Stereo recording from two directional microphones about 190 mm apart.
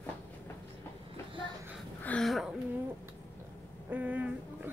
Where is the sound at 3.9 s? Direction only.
10° right (ahead or behind).